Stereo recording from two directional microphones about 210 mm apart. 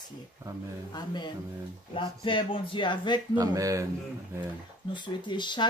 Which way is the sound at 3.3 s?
15° right (ahead or behind).